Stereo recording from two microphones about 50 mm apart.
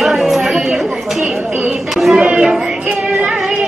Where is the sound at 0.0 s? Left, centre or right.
Centre.